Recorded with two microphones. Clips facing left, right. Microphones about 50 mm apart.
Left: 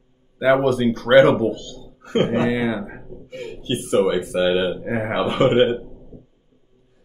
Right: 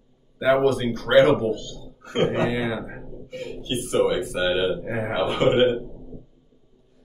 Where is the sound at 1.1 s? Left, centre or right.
Left.